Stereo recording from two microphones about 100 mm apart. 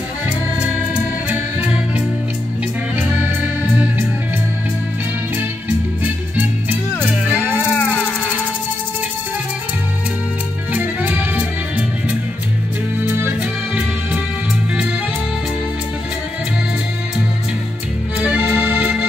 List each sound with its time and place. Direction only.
0.6 s music: 10° right (ahead or behind)
10.7 s music: 15° right (ahead or behind)
18.2 s accordion: 10° right (ahead or behind)